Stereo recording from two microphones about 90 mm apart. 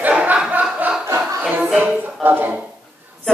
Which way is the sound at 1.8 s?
15° right (ahead or behind).